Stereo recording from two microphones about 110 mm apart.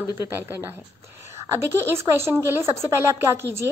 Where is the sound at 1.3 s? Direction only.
25° right (ahead or behind).